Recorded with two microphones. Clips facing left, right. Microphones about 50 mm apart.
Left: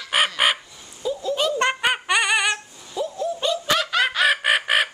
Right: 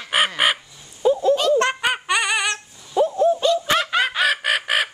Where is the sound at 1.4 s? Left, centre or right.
Centre.